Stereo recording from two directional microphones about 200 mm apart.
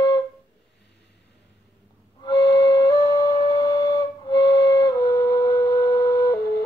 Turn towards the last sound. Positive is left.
turn(degrees=15)  # may be behind; listen again after turning